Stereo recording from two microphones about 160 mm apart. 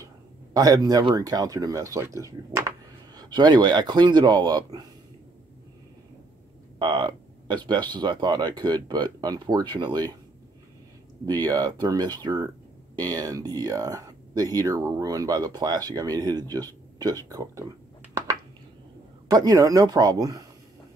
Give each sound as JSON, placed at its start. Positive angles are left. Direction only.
{"t": 0.0, "sound": "speech", "side_deg": -20}
{"t": 6.8, "sound": "speech", "side_deg": -30}
{"t": 11.2, "sound": "speech", "side_deg": -25}
{"t": 19.2, "sound": "speech", "side_deg": -20}